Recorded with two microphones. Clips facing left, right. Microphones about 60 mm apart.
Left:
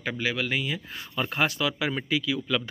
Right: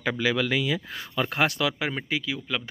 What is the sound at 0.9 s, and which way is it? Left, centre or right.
Speech, right.